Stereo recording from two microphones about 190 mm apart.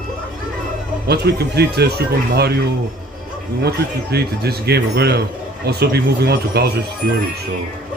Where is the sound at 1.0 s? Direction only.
60° right (ahead or behind).